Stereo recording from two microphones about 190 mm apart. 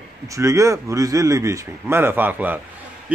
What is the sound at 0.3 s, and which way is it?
A man's voice, 15° right (ahead or behind).